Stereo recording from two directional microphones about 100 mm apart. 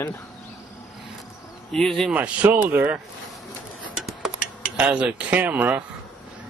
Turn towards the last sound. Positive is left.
turn(degrees=-15)  # may be behind; listen again after turning